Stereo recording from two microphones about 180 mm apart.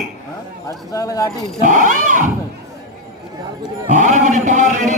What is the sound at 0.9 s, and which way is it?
Speech, 20° left (ahead or behind).